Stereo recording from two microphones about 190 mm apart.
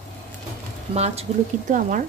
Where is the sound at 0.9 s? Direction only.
35° right (ahead or behind).